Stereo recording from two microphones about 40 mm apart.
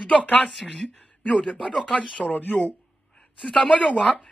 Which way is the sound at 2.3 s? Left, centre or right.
Left.